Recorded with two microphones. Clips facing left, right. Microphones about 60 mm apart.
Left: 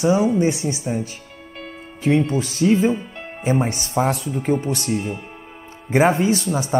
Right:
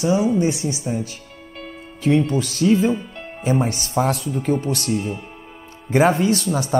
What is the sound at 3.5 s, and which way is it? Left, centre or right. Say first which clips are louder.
Speech: even; left.